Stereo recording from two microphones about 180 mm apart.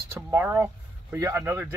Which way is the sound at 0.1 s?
15° right (ahead or behind).